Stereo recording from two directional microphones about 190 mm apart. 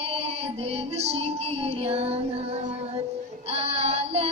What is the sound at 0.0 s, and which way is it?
Music, 30° right (ahead or behind).